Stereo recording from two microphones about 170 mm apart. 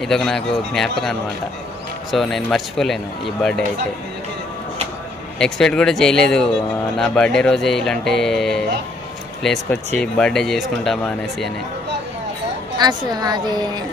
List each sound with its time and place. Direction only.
0.0 s speech: centre (ahead or behind)
2.0 s speech: centre (ahead or behind)
5.4 s speech: 5° left (ahead or behind)
12.7 s a woman's voice: 25° right (ahead or behind)